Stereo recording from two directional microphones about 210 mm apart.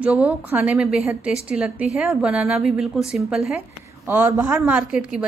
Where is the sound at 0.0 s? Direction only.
5° right (ahead or behind).